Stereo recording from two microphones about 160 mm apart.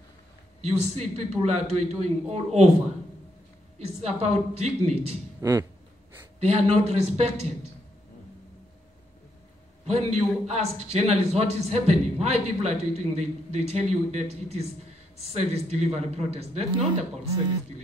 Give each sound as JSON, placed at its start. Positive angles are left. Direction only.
{"t": 0.7, "sound": "a man's voice", "side_deg": -40}
{"t": 3.8, "sound": "a man's voice", "side_deg": -40}
{"t": 5.4, "sound": "speech", "side_deg": -20}
{"t": 6.4, "sound": "a man's voice", "side_deg": -40}
{"t": 9.8, "sound": "a man's voice", "side_deg": -45}